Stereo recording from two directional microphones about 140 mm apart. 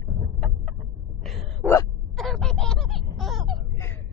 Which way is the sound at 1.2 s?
Centre (ahead or behind).